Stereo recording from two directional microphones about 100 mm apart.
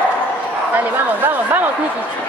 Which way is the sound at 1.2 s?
20° right (ahead or behind).